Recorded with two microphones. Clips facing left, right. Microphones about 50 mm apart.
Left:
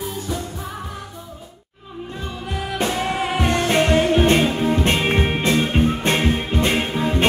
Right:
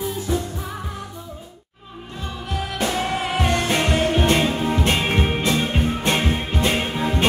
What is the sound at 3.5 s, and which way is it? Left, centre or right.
Music, centre.